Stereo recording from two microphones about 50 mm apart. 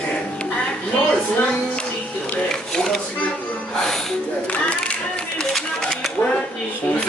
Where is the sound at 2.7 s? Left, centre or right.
Centre.